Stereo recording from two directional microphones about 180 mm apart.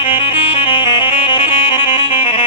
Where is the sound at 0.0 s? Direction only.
30° left (ahead or behind).